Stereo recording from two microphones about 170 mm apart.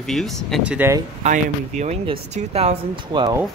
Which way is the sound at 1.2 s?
45° right (ahead or behind).